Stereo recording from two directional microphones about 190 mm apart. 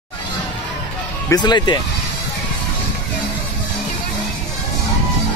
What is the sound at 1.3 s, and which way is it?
Speech, 20° left (ahead or behind).